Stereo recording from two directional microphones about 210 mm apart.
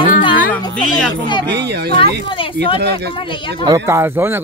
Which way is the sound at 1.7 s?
50° right (ahead or behind).